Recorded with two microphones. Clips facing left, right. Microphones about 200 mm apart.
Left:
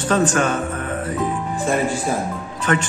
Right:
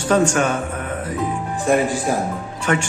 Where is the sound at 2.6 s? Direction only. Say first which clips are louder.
Even; 10° right (ahead or behind).